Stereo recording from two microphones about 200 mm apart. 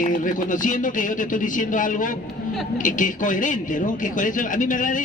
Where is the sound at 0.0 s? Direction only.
40° left (ahead or behind).